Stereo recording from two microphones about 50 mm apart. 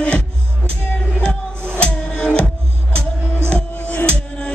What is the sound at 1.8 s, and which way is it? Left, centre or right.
Music, left.